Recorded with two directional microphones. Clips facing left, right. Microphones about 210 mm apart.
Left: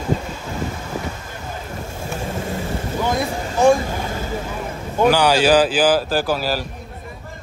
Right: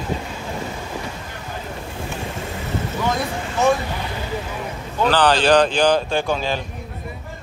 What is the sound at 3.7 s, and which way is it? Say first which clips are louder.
Vehicle: left 5 dB; 45° left (ahead or behind).